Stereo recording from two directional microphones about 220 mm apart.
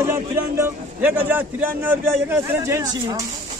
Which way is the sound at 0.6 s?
10° right (ahead or behind).